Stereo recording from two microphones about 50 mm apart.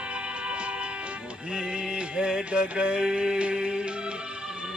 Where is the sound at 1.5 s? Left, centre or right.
Centre.